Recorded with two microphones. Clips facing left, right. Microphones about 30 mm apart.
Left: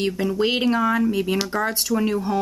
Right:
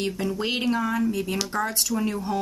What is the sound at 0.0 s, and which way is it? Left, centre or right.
Speech, centre.